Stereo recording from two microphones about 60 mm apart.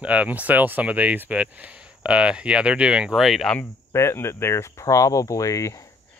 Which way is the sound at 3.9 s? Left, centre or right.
Left.